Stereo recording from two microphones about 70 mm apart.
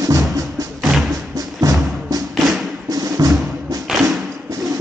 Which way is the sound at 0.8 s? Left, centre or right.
Centre.